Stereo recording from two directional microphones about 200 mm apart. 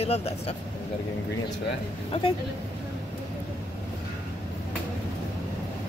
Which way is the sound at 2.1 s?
25° left (ahead or behind).